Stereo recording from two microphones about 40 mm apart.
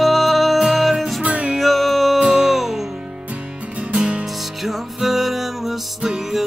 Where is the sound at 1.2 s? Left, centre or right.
Right.